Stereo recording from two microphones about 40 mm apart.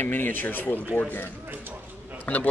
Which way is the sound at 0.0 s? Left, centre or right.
Left.